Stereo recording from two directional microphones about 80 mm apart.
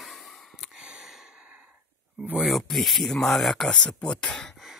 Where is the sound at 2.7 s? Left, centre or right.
Centre.